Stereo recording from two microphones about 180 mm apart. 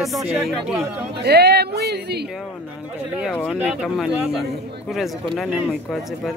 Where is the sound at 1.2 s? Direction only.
65° right (ahead or behind).